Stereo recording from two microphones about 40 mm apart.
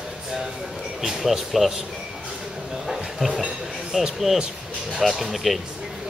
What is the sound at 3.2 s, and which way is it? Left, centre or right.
Speech, centre.